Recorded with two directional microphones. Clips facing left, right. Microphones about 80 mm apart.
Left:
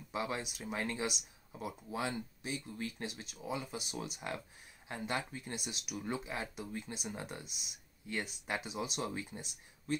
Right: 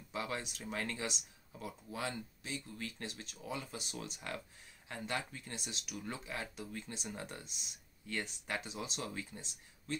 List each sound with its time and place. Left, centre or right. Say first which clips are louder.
0.1 s speech: left 2 dB; centre